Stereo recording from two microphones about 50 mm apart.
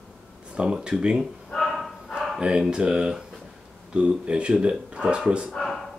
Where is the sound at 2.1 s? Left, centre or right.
Centre.